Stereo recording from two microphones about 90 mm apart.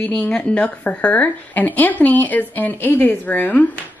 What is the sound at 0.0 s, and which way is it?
A woman's voice, 10° left (ahead or behind).